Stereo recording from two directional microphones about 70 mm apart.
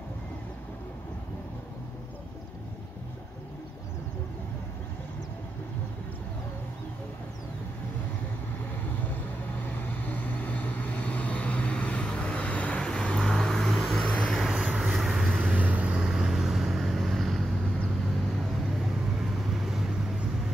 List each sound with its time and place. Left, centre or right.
9.0 s vehicle: left; by 14.5 s centre
14.5 s vehicle: centre
15.5 s vehicle: right; by 17.5 s centre
19.1 s vehicle: centre